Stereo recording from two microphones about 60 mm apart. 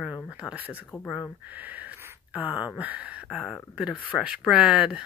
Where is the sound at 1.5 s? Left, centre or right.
Right.